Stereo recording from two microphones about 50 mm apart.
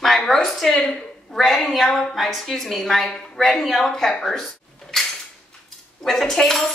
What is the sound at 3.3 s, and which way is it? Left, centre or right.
A woman's voice, centre.